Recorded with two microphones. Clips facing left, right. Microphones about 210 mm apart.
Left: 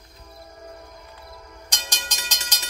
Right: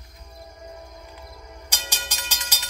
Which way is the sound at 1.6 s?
10° right (ahead or behind).